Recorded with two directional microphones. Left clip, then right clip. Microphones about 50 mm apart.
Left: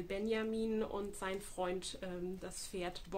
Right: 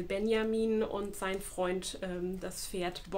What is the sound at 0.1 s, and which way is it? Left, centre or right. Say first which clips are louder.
Speech: right 7 dB; centre.